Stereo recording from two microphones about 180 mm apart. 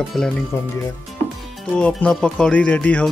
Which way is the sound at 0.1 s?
Centre (ahead or behind).